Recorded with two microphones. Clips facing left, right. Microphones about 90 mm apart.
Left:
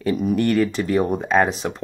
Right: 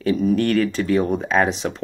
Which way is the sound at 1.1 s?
Centre (ahead or behind).